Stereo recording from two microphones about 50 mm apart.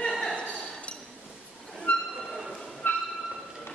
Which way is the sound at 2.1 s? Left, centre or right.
Centre.